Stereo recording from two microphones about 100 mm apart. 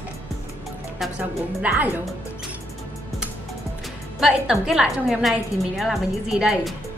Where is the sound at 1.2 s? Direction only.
15° right (ahead or behind).